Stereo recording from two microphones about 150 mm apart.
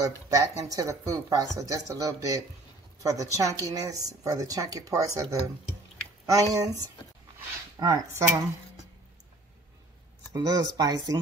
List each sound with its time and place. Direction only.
0.3 s a woman's voice: 20° right (ahead or behind)
10.3 s speech: 25° right (ahead or behind)